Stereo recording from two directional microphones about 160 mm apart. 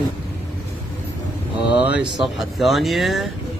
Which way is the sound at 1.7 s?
10° right (ahead or behind).